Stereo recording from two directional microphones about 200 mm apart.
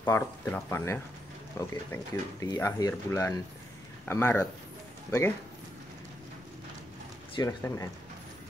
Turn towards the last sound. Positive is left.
turn(degrees=15)  # may be behind; listen again after turning